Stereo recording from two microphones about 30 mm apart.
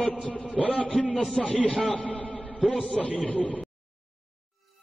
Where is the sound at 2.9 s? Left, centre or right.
Left.